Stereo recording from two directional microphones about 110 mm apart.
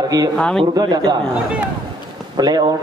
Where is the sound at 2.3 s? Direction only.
40° right (ahead or behind).